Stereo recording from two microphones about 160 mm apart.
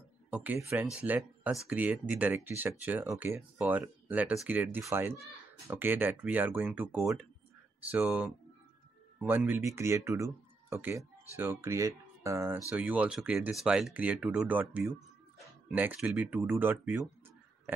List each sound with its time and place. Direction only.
0.3 s speech: 10° right (ahead or behind)